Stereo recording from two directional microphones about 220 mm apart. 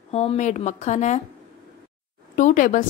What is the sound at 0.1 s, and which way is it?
A woman's voice, 30° left (ahead or behind).